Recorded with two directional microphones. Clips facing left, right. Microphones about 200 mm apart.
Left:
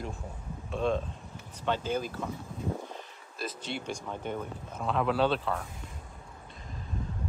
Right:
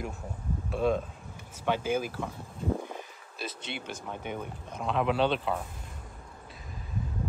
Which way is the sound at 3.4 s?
65° right (ahead or behind).